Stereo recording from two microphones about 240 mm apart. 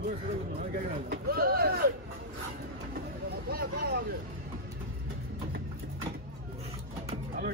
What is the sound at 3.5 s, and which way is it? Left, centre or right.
Vehicle, right.